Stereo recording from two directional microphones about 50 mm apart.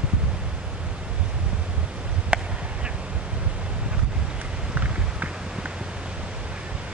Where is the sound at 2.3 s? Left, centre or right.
Right.